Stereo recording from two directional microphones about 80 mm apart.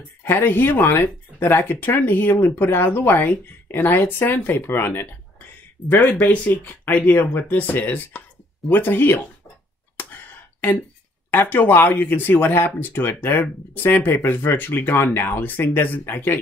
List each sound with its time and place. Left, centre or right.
0.2 s speech: left
9.9 s a sound: left
11.2 s speech: left